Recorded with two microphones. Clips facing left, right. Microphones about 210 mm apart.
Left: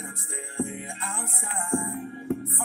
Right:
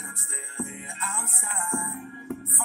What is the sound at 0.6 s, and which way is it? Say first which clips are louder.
Music: left 4 dB; 60° left (ahead or behind).